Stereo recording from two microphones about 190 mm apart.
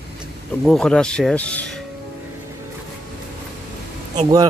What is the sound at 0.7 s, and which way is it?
Speech, 5° left (ahead or behind).